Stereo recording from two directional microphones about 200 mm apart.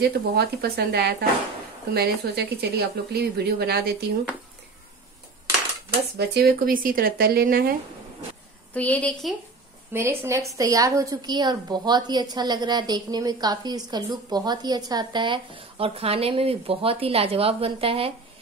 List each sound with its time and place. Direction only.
0.0 s a woman's voice: 50° right (ahead or behind)
6.1 s speech: 55° right (ahead or behind)
8.7 s a woman's voice: 5° left (ahead or behind)
9.9 s a woman's voice: 15° right (ahead or behind)